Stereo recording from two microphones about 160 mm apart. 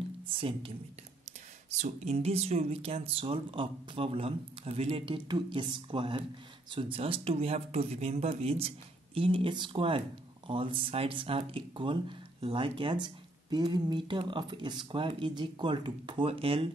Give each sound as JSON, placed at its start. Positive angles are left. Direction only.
{"t": 0.3, "sound": "speech", "side_deg": -35}